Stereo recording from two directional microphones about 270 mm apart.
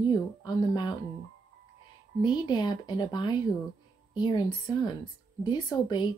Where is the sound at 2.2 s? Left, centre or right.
Centre.